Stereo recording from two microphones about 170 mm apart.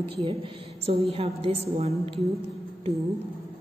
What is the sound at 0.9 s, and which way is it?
A woman's voice, 35° right (ahead or behind).